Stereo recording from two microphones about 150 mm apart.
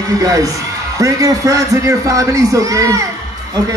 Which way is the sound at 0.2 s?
25° right (ahead or behind).